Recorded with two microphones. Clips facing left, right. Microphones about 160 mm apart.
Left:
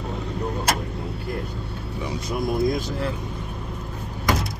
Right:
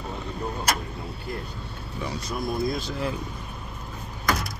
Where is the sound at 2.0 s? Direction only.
20° left (ahead or behind).